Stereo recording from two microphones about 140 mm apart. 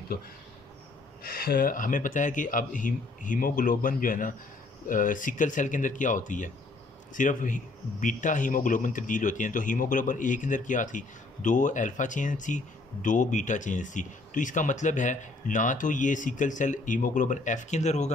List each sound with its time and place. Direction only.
1.2 s speech: 90° left; by 18.1 s 55° left (ahead or behind)